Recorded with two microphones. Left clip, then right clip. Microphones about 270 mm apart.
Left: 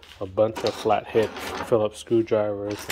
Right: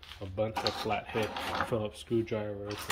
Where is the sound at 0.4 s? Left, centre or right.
Centre.